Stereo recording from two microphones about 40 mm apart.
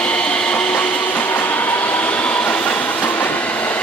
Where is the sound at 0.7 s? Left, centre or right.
Left.